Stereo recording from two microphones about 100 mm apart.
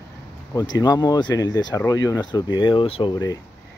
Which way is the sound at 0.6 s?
40° left (ahead or behind).